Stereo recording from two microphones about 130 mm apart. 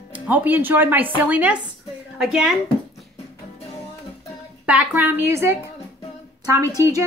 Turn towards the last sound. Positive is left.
turn(degrees=-25)  # may be behind; listen again after turning